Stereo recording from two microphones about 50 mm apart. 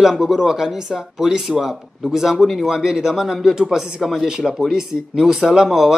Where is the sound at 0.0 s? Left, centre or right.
Centre.